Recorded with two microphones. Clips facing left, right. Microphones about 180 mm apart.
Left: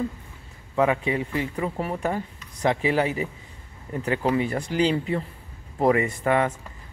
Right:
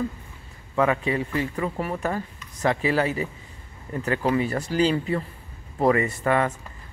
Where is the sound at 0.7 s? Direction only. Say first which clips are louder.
Even; 15° left (ahead or behind).